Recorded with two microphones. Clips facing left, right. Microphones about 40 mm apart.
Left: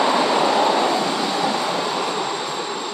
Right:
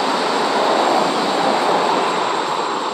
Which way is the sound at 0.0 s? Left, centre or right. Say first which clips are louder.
Left 1 dB; centre.